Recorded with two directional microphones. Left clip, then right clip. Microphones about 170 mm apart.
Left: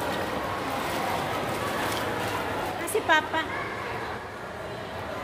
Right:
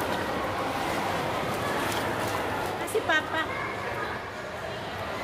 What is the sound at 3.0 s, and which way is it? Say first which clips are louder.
Speech: left 4 dB; 30° left (ahead or behind).